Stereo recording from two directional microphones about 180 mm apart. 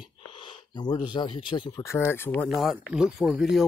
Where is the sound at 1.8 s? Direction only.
15° left (ahead or behind).